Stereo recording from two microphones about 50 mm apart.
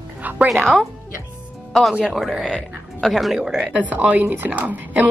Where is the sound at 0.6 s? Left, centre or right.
Centre.